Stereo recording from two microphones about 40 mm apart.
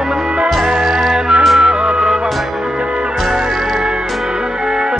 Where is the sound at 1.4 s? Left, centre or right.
Centre.